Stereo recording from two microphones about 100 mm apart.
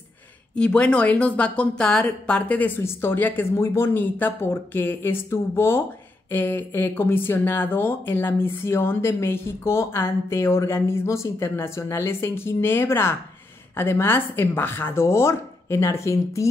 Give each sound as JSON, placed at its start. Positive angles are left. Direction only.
{"t": 0.6, "sound": "speech", "side_deg": 10}